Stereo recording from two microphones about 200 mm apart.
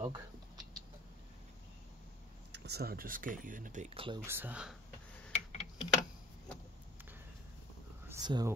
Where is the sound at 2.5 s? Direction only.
55° right (ahead or behind); by 4.2 s 25° right (ahead or behind).